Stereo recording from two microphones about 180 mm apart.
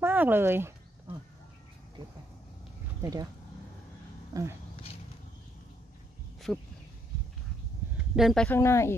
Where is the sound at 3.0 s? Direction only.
20° right (ahead or behind).